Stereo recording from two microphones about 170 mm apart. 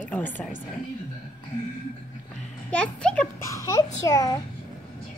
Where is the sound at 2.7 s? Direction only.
5° left (ahead or behind).